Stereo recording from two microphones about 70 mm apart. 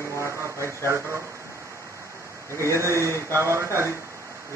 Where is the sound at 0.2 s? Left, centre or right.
Right.